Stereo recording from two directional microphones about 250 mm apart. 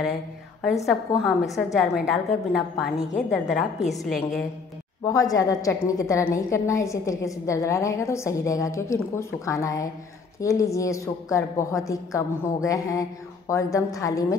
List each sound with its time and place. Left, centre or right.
0.0 s a woman's voice: centre
1.1 s a woman's voice: centre
1.5 s a woman's voice: centre
5.0 s a woman's voice: centre